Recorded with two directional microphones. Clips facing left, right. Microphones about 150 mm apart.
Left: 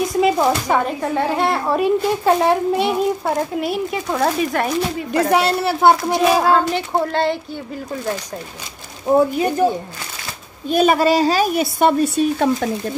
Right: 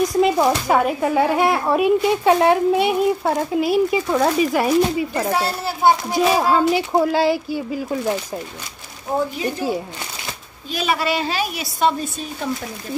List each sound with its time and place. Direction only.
0.0 s speech: centre (ahead or behind)
5.3 s a child's voice: 70° left (ahead or behind)
6.1 s speech: 5° right (ahead or behind)
10.7 s a woman's voice: 50° left (ahead or behind); by 12.6 s 65° left (ahead or behind)